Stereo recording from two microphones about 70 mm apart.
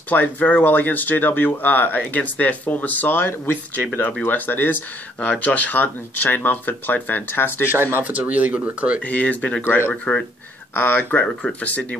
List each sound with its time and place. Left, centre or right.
0.1 s speech: left
7.7 s speech: right
8.0 s speech: centre
9.0 s speech: centre
9.7 s speech: left